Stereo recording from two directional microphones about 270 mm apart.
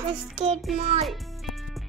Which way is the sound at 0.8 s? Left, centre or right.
Right.